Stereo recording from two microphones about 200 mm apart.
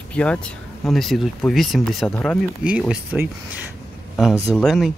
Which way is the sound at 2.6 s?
5° right (ahead or behind).